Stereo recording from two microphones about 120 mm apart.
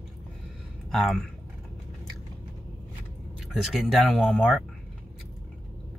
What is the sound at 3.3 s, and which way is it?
Speech, centre (ahead or behind).